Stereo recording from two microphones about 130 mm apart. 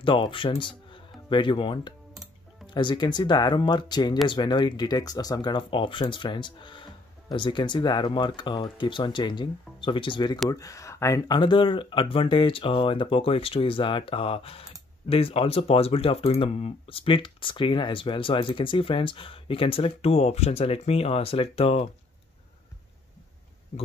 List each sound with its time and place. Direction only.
0.0 s speech: 40° left (ahead or behind)